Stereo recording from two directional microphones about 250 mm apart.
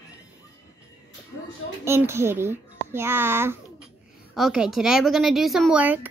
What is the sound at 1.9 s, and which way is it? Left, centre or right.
A child's voice, centre.